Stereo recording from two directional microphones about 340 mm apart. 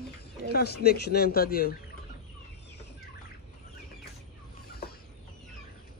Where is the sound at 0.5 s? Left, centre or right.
Left.